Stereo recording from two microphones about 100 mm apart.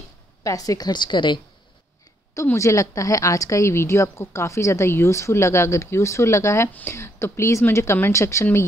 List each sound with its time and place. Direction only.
0.4 s a woman's voice: 35° left (ahead or behind); by 1.4 s 50° left (ahead or behind)
2.5 s a woman's voice: 30° left (ahead or behind)